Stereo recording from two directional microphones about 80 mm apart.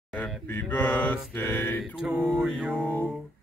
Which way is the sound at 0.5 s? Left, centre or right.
Left.